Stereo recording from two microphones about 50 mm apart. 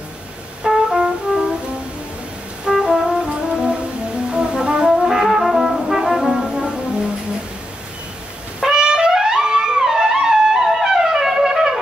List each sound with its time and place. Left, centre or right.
0.7 s brass instrument: centre
2.8 s brass instrument: centre
4.3 s brass instrument: centre
5.0 s brass instrument: centre
6.2 s brass instrument: centre
8.5 s brass instrument: centre